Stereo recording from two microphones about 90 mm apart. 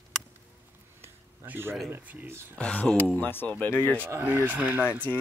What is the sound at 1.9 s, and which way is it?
Speech, 20° right (ahead or behind).